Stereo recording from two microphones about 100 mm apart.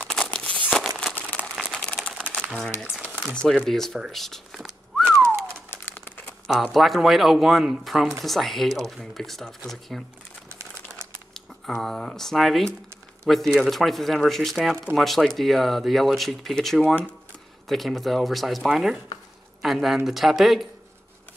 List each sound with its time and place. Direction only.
0.1 s crumpling: 10° left (ahead or behind)
1.5 s a sound: centre (ahead or behind)
2.3 s typing: 20° left (ahead or behind)
3.6 s speech: 5° left (ahead or behind)
4.1 s a sound: 5° left (ahead or behind)
5.0 s pigeon: 30° right (ahead or behind)
5.7 s bird: 20° left (ahead or behind)
6.4 s speech: centre (ahead or behind)
11.3 s speech: centre (ahead or behind)